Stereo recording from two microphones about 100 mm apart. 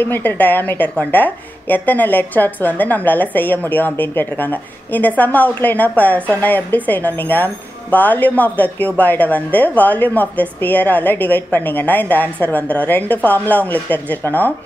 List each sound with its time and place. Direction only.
0.0 s a woman's voice: 20° left (ahead or behind)